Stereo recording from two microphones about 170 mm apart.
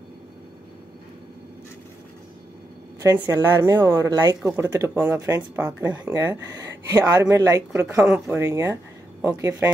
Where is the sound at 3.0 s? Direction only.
20° right (ahead or behind).